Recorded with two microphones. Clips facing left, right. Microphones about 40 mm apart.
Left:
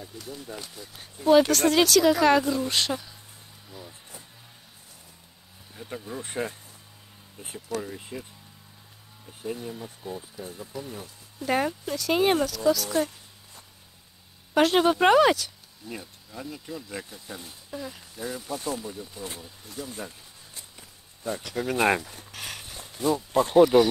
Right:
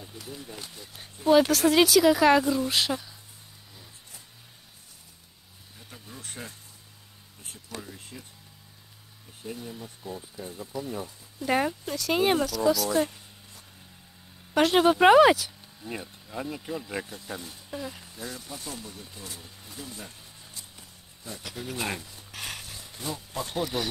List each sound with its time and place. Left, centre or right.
0.0 s speech: centre
3.7 s vehicle: centre
5.8 s speech: left
7.8 s speech: centre
9.4 s speech: centre
10.3 s speech: centre
14.5 s speech: centre
15.8 s speech: centre
17.0 s speech: centre
18.2 s speech: centre
19.4 s speech: centre
21.7 s speech: left
22.3 s a sound: centre
23.4 s speech: centre